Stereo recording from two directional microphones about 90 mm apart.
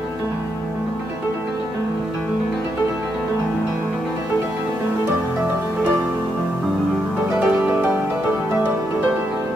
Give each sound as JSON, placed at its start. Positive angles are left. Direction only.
{"t": 7.3, "sound": "music", "side_deg": -20}